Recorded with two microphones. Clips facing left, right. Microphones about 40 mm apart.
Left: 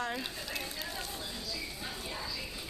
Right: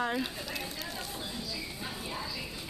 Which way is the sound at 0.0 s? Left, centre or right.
Centre.